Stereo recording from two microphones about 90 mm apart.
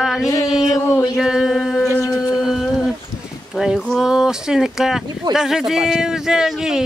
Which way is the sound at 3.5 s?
5° right (ahead or behind).